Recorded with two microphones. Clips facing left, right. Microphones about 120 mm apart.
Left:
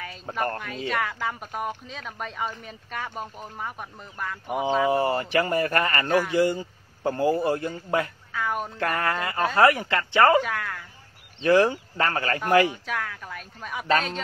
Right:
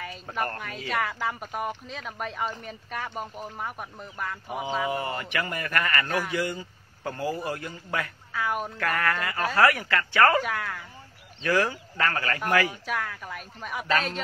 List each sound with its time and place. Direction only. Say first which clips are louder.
0.0 s a sound: left 2 dB; centre (ahead or behind)
0.8 s speech: even; centre (ahead or behind)
4.8 s speech: left 7 dB; 30° left (ahead or behind)
8.3 s speech: left 1 dB; centre (ahead or behind)
8.7 s speech: left 3 dB; 25° left (ahead or behind)
10.4 s speech: left 1 dB; centre (ahead or behind)
11.4 s speech: left 6 dB; 25° left (ahead or behind)
12.8 s speech: even; centre (ahead or behind)